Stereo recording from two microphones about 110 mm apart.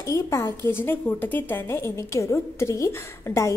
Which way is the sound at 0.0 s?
25° left (ahead or behind).